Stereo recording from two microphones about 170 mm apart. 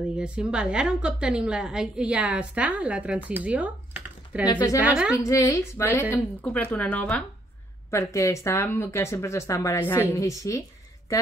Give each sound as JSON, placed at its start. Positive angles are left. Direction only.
{"t": 0.2, "sound": "a woman's voice", "side_deg": -5}
{"t": 4.5, "sound": "a woman's voice", "side_deg": 25}
{"t": 4.7, "sound": "a woman's voice", "side_deg": -5}
{"t": 5.1, "sound": "speech", "side_deg": 20}